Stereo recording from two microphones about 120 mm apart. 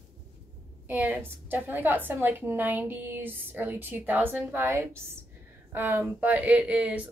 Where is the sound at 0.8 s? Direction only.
15° right (ahead or behind).